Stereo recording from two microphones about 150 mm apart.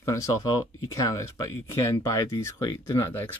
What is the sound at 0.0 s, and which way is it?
Speech, 20° left (ahead or behind).